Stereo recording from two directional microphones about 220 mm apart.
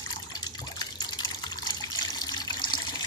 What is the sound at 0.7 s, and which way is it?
Water, 20° left (ahead or behind).